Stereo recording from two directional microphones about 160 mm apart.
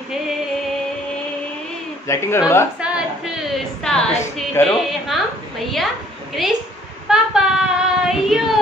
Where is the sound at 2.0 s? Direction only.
15° left (ahead or behind).